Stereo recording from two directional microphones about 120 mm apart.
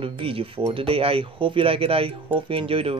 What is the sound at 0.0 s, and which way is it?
Speech, 50° right (ahead or behind).